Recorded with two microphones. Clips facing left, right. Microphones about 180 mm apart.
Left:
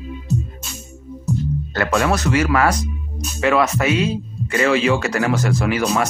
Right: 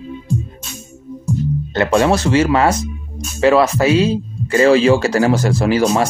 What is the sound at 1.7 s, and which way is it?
Speech, 25° right (ahead or behind).